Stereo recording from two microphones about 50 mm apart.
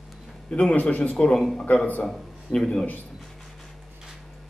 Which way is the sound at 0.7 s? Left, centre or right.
Left.